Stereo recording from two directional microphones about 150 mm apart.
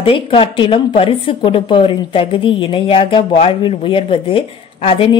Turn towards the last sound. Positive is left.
turn(degrees=35)  # may be behind; listen again after turning